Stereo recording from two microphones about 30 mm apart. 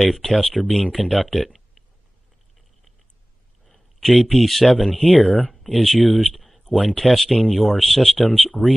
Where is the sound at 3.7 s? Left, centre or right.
Centre.